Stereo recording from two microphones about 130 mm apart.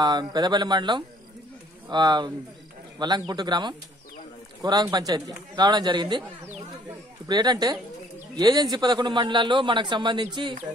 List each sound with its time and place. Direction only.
0.0 s a man's voice: 35° right (ahead or behind)
7.2 s a man's voice: 30° right (ahead or behind)